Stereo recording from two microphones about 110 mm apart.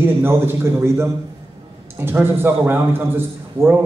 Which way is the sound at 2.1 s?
20° right (ahead or behind).